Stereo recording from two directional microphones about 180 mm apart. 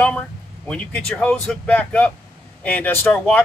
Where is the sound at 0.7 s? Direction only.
5° left (ahead or behind).